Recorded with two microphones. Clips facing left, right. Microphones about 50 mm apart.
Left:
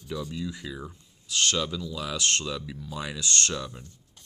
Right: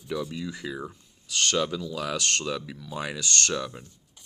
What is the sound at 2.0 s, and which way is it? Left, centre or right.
Speech, right.